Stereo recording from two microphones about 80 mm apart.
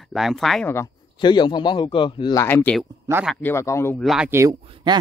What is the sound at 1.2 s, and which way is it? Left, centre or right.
A man's voice, left.